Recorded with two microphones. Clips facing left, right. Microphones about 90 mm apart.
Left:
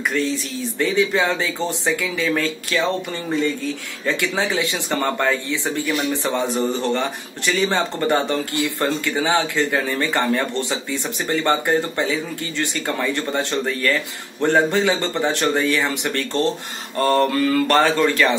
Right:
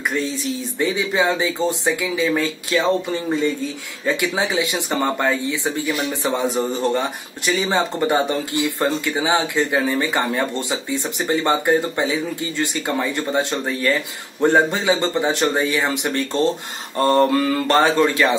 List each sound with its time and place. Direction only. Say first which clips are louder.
0.7 s speech: left 2 dB; 15° right (ahead or behind)